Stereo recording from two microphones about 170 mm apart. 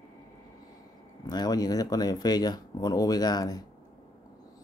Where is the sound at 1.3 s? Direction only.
25° left (ahead or behind).